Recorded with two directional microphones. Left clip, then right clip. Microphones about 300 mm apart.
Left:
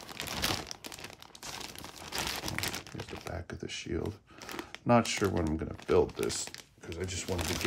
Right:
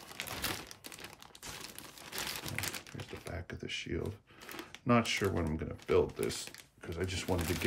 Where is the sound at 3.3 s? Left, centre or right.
Centre.